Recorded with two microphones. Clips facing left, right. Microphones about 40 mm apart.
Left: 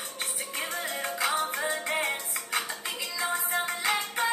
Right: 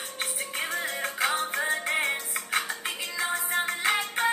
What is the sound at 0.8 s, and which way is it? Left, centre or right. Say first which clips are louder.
Music: right 2 dB; centre.